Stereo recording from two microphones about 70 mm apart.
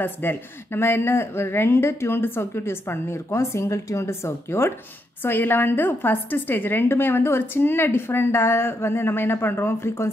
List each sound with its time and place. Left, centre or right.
0.0 s a woman's voice: left